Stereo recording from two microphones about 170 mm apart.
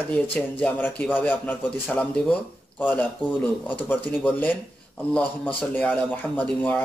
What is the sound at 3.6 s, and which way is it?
Speech, 10° left (ahead or behind).